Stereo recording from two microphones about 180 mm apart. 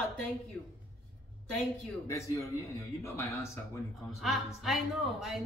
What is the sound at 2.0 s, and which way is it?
Speech, 15° left (ahead or behind).